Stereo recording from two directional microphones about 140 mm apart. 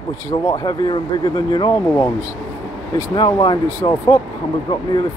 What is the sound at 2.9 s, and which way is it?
Speech, 25° left (ahead or behind).